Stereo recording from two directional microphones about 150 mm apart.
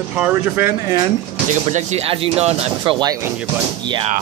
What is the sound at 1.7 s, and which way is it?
Speech, 45° right (ahead or behind).